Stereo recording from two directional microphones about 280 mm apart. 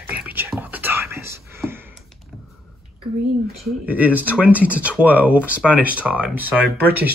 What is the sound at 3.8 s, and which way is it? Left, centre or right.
Speech, centre.